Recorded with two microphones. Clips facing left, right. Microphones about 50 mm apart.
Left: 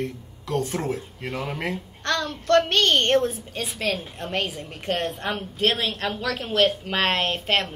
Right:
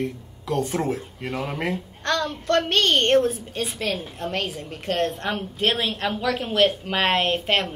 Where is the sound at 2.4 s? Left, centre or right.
Right.